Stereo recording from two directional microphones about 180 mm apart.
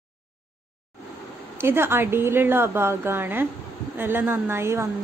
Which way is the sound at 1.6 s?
15° right (ahead or behind).